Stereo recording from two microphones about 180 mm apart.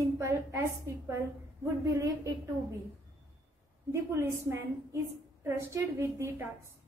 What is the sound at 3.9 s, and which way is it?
A woman's voice, 15° right (ahead or behind).